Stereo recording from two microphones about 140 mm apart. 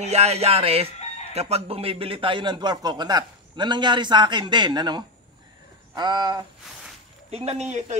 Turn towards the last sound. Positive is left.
turn(degrees=-55)  # may be behind; listen again after turning